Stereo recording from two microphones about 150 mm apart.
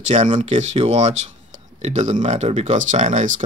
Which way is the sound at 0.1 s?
50° right (ahead or behind).